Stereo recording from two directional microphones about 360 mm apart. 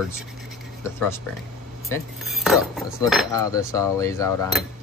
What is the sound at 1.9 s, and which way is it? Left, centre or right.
Cutlery, centre.